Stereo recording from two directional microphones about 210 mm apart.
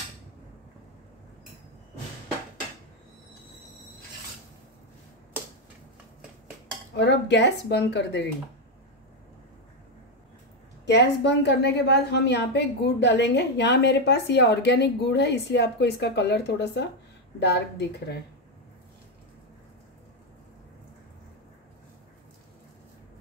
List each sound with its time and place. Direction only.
7.0 s a woman's voice: 55° left (ahead or behind)
10.9 s a woman's voice: 55° left (ahead or behind)